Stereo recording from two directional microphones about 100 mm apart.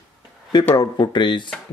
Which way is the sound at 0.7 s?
45° left (ahead or behind).